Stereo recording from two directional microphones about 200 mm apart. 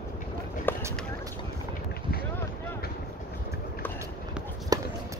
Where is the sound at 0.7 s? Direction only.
10° left (ahead or behind).